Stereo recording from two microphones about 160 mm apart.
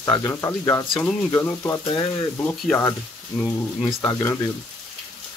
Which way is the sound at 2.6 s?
15° left (ahead or behind).